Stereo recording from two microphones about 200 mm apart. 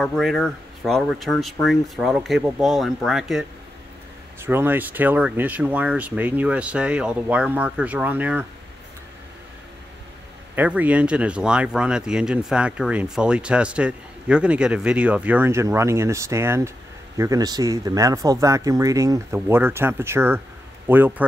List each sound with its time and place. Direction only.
0.0 s speech: centre (ahead or behind)
10.5 s speech: 10° right (ahead or behind)